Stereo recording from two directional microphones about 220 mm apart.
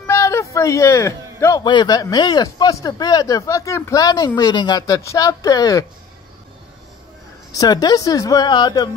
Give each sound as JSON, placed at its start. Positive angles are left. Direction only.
{"t": 0.0, "sound": "speech", "side_deg": 15}
{"t": 7.5, "sound": "speech", "side_deg": 20}